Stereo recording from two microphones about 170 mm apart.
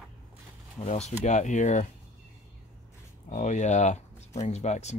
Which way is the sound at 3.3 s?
45° left (ahead or behind).